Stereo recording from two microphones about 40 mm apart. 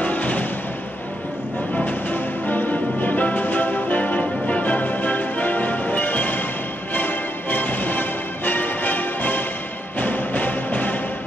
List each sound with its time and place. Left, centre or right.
0.0 s music: left
1.9 s music: left